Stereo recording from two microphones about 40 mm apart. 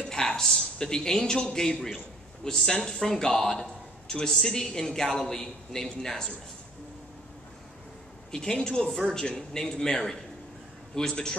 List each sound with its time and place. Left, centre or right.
0.0 s a sound: centre
0.7 s speech: centre
8.3 s speech: centre